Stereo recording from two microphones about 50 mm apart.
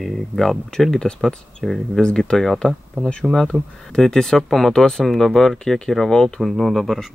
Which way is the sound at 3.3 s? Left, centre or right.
Right.